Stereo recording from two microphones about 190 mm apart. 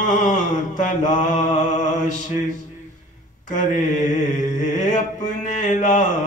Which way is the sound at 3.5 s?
40° left (ahead or behind).